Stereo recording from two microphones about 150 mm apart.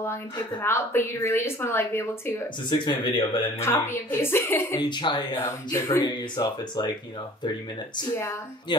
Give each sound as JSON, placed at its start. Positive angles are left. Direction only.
{"t": 0.0, "sound": "a woman's voice", "side_deg": 15}
{"t": 2.7, "sound": "speech", "side_deg": 30}
{"t": 3.5, "sound": "a woman's voice", "side_deg": 15}
{"t": 4.7, "sound": "speech", "side_deg": 30}
{"t": 5.4, "sound": "a woman's voice", "side_deg": 15}
{"t": 6.0, "sound": "speech", "side_deg": 30}